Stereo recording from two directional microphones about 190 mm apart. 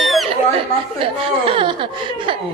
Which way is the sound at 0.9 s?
30° right (ahead or behind).